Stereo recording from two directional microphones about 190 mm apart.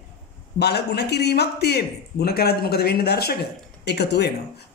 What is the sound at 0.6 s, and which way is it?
Speech, 60° left (ahead or behind).